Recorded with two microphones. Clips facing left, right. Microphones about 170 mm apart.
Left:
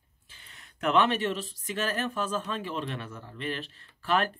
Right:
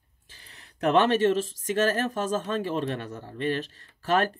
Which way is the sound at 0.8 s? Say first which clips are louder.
Right 4 dB; 40° right (ahead or behind).